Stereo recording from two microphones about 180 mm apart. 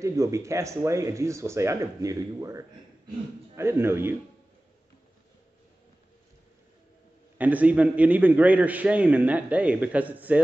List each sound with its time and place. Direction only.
0.0 s a man's voice: 15° right (ahead or behind)
7.3 s a man's voice: 10° right (ahead or behind)